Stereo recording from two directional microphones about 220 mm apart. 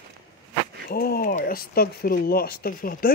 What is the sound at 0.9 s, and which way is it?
A man's voice, 45° left (ahead or behind).